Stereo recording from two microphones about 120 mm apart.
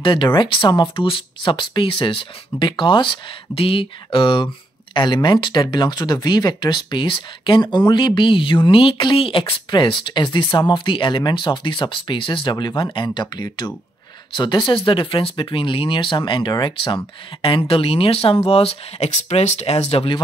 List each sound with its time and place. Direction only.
0.0 s speech: 40° left (ahead or behind)